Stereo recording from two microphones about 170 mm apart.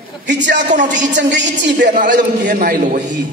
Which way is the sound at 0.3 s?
90° right.